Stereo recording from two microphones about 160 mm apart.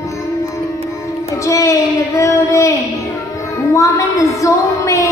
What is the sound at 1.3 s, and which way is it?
Child singing, 20° left (ahead or behind).